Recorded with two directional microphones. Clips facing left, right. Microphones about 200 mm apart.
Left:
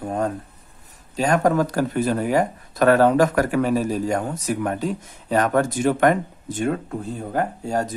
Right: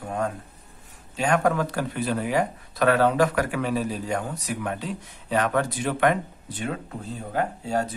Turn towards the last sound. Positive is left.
turn(degrees=45)  # may be behind; listen again after turning